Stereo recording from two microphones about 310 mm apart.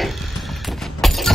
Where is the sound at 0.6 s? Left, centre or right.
Centre.